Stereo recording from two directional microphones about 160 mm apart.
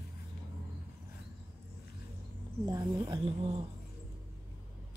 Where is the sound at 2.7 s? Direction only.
25° right (ahead or behind).